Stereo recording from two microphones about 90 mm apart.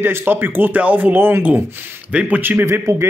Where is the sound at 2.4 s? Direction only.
25° right (ahead or behind).